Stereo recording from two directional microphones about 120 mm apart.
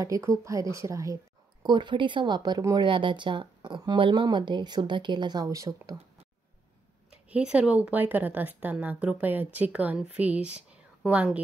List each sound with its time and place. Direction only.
0.0 s a woman's voice: 25° right (ahead or behind)
7.5 s a woman's voice: 10° right (ahead or behind)